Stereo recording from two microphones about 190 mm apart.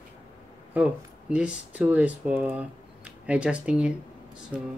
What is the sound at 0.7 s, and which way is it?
Speech, 5° right (ahead or behind).